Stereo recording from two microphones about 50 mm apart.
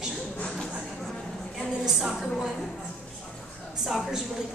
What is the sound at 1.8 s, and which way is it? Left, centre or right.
Speech, centre.